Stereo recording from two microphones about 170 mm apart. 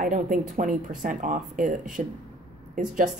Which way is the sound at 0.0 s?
50° right (ahead or behind).